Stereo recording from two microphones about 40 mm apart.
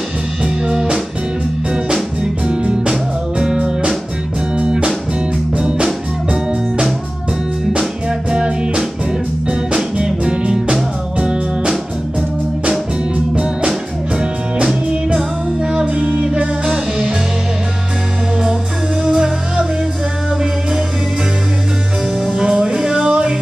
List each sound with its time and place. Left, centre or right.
0.7 s music: centre
2.4 s music: right
8.3 s music: right
9.9 s music: right
13.3 s music: right
19.0 s music: centre
22.3 s music: centre